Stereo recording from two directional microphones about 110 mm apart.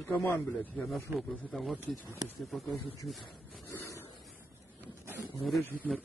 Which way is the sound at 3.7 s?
25° left (ahead or behind).